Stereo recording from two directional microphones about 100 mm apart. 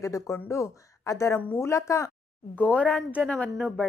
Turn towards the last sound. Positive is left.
turn(degrees=10)  # may be behind; listen again after turning